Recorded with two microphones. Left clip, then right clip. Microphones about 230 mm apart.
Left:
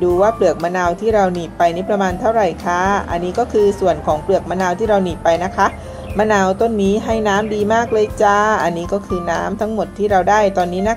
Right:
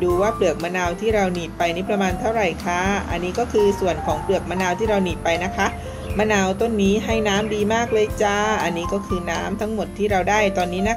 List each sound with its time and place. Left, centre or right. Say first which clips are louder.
0.0 s speech: left 5 dB; centre